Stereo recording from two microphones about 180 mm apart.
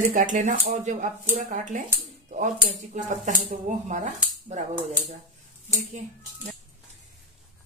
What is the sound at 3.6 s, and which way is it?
Speech, 40° right (ahead or behind).